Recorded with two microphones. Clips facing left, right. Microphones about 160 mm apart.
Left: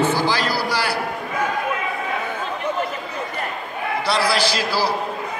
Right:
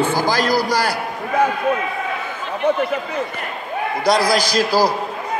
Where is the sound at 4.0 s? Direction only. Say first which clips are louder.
Right 4 dB; 40° right (ahead or behind).